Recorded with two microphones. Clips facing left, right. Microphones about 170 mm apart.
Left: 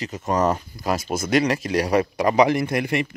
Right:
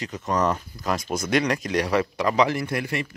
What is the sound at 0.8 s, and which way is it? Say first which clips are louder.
Speech: left 2 dB; 5° left (ahead or behind).